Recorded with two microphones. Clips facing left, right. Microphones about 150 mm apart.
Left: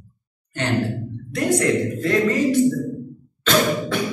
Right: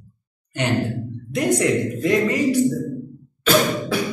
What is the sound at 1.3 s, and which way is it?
A man's voice, 20° right (ahead or behind).